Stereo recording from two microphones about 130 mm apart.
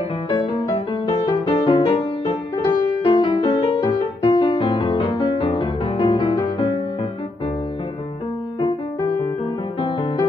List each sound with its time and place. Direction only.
0.3 s music: 35° left (ahead or behind)
9.8 s music: 35° left (ahead or behind)